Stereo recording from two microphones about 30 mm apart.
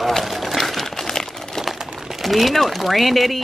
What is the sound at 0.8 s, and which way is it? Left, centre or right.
Crumpling, centre.